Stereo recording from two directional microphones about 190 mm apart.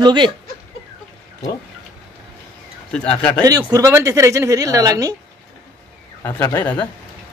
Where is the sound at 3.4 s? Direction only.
20° right (ahead or behind).